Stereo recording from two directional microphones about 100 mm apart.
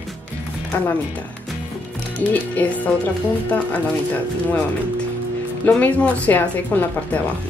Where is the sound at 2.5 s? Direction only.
15° left (ahead or behind).